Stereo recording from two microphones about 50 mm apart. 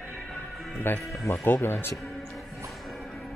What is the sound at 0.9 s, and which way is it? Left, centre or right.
Speech, left.